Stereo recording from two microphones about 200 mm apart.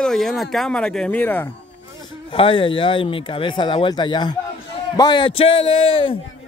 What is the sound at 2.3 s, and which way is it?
Speech, 25° left (ahead or behind).